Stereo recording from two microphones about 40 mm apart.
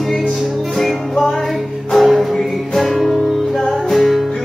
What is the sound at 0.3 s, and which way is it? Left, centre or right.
Music, centre.